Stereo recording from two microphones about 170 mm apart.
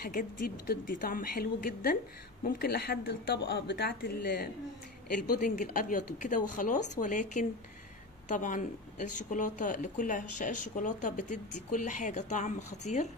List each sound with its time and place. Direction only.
0.0 s speech: 55° left (ahead or behind)
2.4 s speech: 65° left (ahead or behind); by 13.1 s 40° left (ahead or behind)